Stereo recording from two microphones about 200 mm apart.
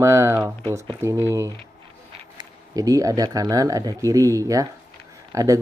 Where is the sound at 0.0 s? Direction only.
15° right (ahead or behind).